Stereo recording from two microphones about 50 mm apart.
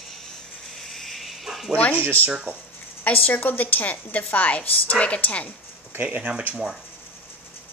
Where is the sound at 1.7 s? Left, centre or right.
Left.